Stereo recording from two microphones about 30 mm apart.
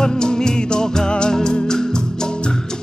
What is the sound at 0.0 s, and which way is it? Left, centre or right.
Music, left.